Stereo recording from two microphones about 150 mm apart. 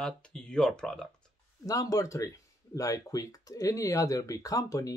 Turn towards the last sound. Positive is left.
turn(degrees=25)  # may be behind; listen again after turning